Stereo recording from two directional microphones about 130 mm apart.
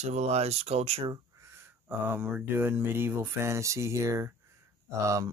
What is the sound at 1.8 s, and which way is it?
Speech, 15° right (ahead or behind).